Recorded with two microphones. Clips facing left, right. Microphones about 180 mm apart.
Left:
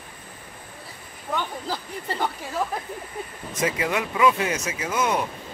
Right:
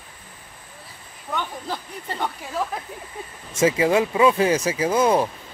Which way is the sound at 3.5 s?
25° right (ahead or behind).